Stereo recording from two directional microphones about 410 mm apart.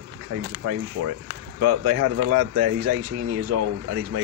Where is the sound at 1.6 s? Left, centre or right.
Right.